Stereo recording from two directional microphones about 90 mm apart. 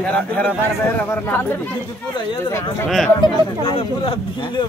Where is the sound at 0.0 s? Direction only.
20° left (ahead or behind).